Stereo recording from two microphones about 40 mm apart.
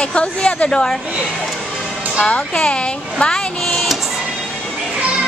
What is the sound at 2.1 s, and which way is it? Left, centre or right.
A child's voice, left.